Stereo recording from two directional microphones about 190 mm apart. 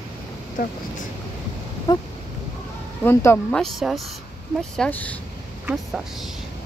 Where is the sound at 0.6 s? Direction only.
50° left (ahead or behind).